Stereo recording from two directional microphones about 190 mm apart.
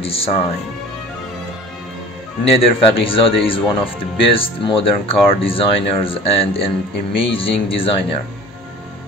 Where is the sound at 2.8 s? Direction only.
30° left (ahead or behind).